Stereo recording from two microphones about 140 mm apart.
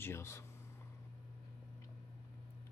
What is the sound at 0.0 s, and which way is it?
Speech, 20° left (ahead or behind).